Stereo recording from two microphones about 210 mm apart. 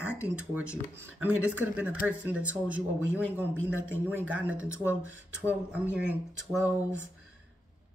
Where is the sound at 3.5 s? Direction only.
70° right (ahead or behind).